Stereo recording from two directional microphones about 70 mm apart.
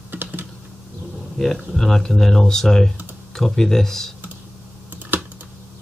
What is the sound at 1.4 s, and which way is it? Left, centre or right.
Speech, centre.